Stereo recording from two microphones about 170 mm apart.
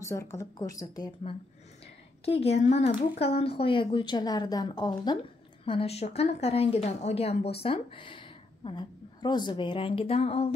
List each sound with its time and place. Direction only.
0.0 s a woman's voice: 15° left (ahead or behind)
2.2 s a woman's voice: 35° left (ahead or behind)
5.7 s speech: 35° left (ahead or behind)